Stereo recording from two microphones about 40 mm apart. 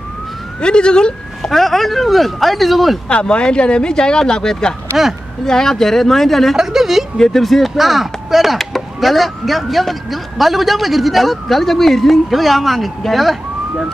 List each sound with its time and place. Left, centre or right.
0.6 s speech: left
1.5 s speech: centre
3.1 s speech: left; by 6.5 s centre
6.5 s a sound: centre
7.2 s speech: centre